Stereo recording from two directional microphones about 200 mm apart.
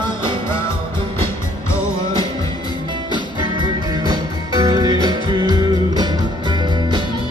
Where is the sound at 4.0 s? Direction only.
20° right (ahead or behind).